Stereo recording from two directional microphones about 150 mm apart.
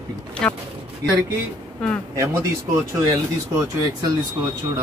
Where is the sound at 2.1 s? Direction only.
25° right (ahead or behind).